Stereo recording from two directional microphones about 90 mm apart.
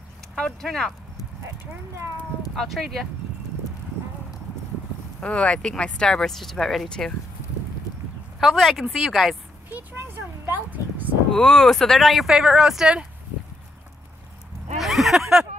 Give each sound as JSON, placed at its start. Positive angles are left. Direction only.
{"t": 0.4, "sound": "speech", "side_deg": 5}
{"t": 2.5, "sound": "speech", "side_deg": 5}
{"t": 5.2, "sound": "speech", "side_deg": 10}
{"t": 8.4, "sound": "speech", "side_deg": 0}
{"t": 9.9, "sound": "a sound", "side_deg": -25}
{"t": 11.3, "sound": "speech", "side_deg": 5}
{"t": 14.8, "sound": "a sound", "side_deg": 0}